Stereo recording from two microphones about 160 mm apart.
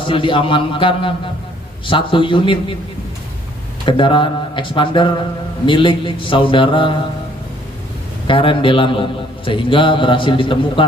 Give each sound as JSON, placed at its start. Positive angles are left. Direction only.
{"t": 0.0, "sound": "a man's voice", "side_deg": 30}
{"t": 3.8, "sound": "a man's voice", "side_deg": 30}
{"t": 8.3, "sound": "a man's voice", "side_deg": 30}